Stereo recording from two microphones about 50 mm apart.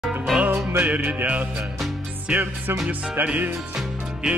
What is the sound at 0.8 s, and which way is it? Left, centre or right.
Music, right.